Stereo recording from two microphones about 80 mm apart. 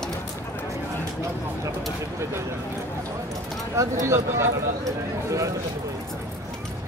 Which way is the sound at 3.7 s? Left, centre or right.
Right.